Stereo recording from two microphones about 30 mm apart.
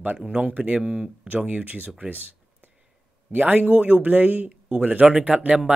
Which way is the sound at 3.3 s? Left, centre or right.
Right.